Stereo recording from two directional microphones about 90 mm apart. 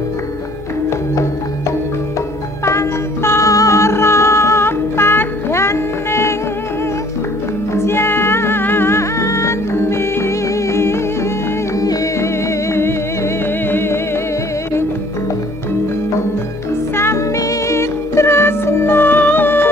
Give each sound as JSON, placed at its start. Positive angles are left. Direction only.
{"t": 2.6, "sound": "music", "side_deg": 35}
{"t": 7.7, "sound": "music", "side_deg": 30}
{"t": 16.9, "sound": "music", "side_deg": 30}